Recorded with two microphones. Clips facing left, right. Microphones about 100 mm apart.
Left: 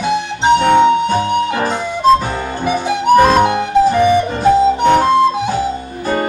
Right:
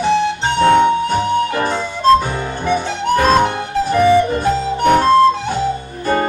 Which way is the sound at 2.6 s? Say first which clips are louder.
Left 4 dB; 10° left (ahead or behind).